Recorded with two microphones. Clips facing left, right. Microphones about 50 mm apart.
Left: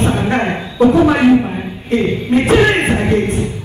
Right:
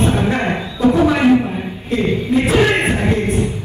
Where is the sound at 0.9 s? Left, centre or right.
Left.